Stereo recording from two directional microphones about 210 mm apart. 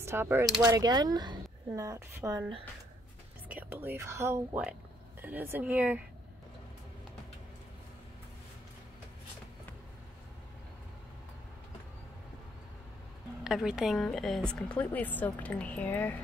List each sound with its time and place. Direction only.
0.0 s a woman's voice: 10° right (ahead or behind)
13.4 s a woman's voice: centre (ahead or behind)